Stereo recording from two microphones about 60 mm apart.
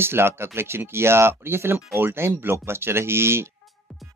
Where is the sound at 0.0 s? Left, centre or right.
Right.